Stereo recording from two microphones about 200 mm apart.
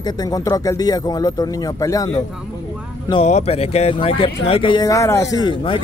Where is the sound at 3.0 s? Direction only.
30° left (ahead or behind).